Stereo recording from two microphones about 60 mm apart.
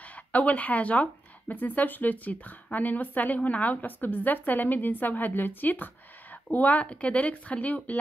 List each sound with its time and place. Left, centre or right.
0.1 s a woman's voice: left